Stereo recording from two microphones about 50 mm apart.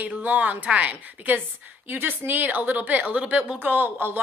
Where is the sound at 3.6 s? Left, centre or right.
Right.